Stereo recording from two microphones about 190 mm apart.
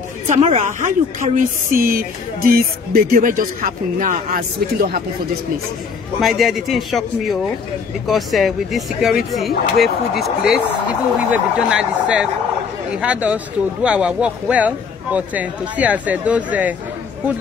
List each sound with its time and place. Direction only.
0.3 s a woman's voice: 35° right (ahead or behind); by 5.0 s 55° right (ahead or behind)
6.2 s speech: centre (ahead or behind)